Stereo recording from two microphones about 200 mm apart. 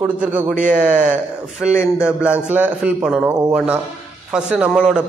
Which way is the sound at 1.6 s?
5° right (ahead or behind).